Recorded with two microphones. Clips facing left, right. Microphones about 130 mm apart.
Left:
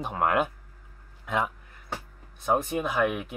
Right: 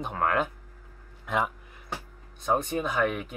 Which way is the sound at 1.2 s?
Centre (ahead or behind).